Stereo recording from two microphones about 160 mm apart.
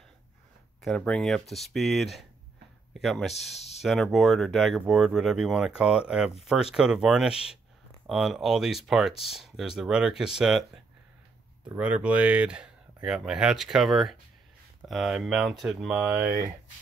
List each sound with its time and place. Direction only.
0.8 s speech: 5° left (ahead or behind)
3.5 s speech: 40° left (ahead or behind)
3.8 s speech: centre (ahead or behind)
11.7 s speech: 10° right (ahead or behind)